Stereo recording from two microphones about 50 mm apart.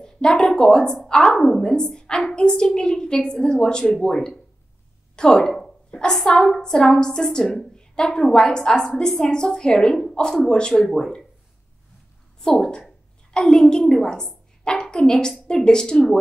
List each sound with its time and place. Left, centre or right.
0.0 s a woman's voice: centre
5.9 s a sound: left
6.4 s a woman's voice: centre
12.4 s a woman's voice: centre